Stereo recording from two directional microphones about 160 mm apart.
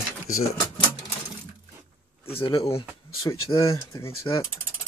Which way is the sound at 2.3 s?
35° left (ahead or behind).